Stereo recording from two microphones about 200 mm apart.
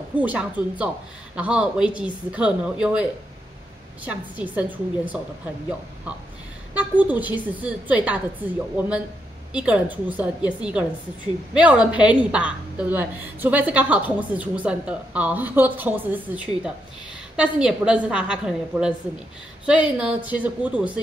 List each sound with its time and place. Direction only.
0.1 s a woman's voice: 5° right (ahead or behind)
6.7 s a woman's voice: 10° right (ahead or behind)